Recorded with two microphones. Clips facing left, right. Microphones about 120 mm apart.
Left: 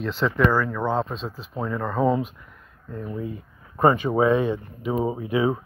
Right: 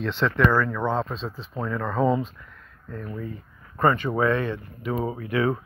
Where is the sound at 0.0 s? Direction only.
5° left (ahead or behind).